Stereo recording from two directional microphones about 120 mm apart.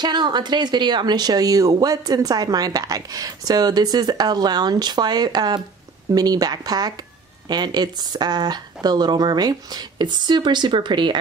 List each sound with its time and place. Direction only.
0.0 s speech: 35° right (ahead or behind)